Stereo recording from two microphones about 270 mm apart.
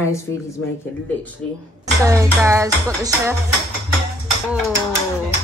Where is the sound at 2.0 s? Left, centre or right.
Centre.